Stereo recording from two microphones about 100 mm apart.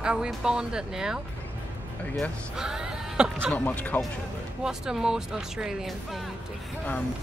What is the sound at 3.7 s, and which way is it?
Speech, 15° left (ahead or behind).